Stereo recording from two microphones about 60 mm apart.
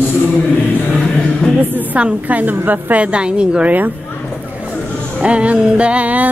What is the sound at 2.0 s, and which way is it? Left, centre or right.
Music, right.